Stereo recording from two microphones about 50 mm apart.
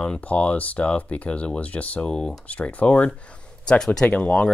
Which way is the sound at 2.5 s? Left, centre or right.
Left.